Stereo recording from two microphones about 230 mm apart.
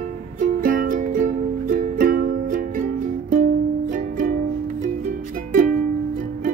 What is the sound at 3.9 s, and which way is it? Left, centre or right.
Music, right.